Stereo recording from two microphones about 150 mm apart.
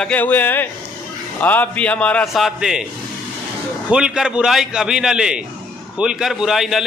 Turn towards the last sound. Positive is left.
turn(degrees=0)  # may be behind; listen again after turning